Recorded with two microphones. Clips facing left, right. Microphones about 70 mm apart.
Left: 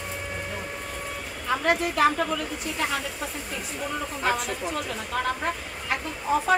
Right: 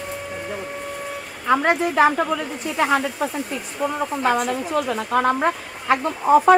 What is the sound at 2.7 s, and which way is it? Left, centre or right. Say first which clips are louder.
Speech: right 10 dB; right.